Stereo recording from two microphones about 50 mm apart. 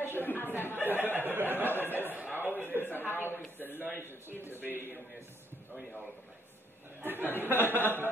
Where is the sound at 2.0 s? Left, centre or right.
Right.